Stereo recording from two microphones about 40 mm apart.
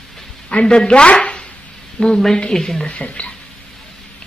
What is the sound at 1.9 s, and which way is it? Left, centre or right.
Speech, centre.